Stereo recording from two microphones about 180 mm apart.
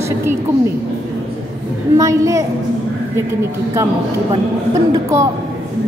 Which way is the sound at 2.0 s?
15° right (ahead or behind).